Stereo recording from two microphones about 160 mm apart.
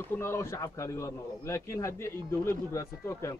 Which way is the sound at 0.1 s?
15° left (ahead or behind).